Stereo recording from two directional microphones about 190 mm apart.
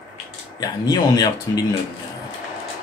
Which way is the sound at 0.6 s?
20° left (ahead or behind).